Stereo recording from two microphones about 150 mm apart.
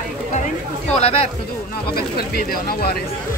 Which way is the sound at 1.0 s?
40° left (ahead or behind).